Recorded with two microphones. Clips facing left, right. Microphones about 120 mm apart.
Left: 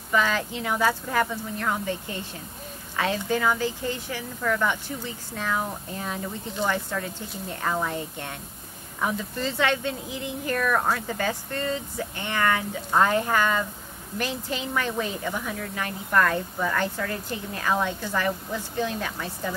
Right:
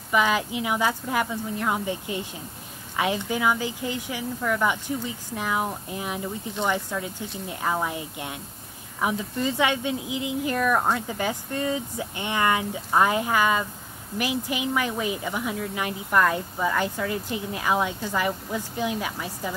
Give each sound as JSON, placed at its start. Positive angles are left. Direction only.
{"t": 0.1, "sound": "speech", "side_deg": -15}